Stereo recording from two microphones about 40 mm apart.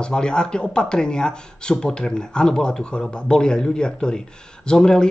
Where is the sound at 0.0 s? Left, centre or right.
Left.